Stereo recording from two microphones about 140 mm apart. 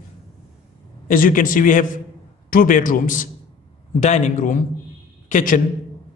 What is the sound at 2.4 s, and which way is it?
A man's voice, 80° left.